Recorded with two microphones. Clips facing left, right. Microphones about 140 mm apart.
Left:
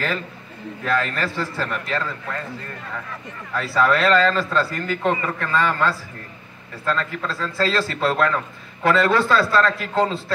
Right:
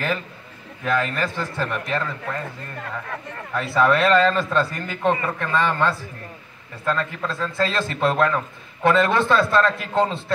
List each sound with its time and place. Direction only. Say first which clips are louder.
0.8 s a man's voice: even; 15° right (ahead or behind)
3.5 s speech: right 1 dB; 20° right (ahead or behind)